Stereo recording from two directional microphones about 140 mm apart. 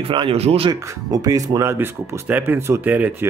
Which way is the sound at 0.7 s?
25° right (ahead or behind).